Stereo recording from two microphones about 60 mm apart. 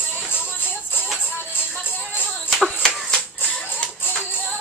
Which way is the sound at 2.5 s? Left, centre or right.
Centre.